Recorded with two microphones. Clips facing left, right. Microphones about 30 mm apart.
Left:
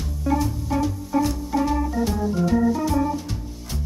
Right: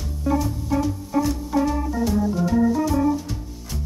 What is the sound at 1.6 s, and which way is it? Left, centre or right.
Organ, centre.